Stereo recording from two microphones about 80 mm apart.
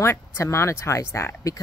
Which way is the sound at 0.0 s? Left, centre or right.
Left.